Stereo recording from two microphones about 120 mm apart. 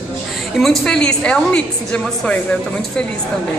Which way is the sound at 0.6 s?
5° left (ahead or behind).